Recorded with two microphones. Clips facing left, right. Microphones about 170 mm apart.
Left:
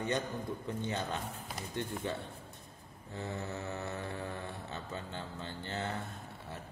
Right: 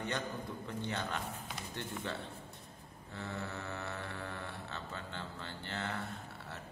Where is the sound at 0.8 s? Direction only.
15° left (ahead or behind).